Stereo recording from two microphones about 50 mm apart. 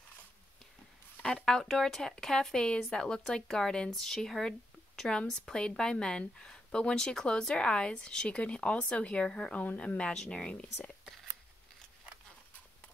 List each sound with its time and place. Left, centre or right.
1.3 s speech: centre
9.5 s speech: left